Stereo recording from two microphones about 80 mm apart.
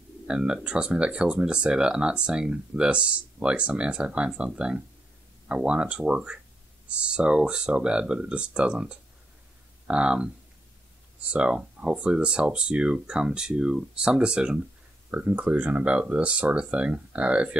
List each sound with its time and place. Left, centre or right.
0.3 s speech: centre